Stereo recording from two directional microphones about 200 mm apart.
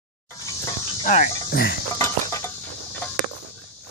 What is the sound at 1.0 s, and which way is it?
Speech, 35° left (ahead or behind).